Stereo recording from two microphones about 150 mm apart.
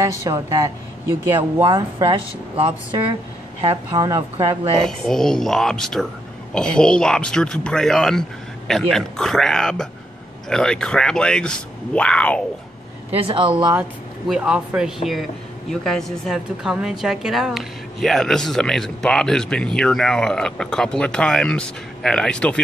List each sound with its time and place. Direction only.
0.3 s a woman's voice: 20° right (ahead or behind)
1.6 s a woman's voice: 30° right (ahead or behind)
4.8 s speech: 5° left (ahead or behind)
13.1 s speech: 35° right (ahead or behind)
14.2 s speech: 5° right (ahead or behind)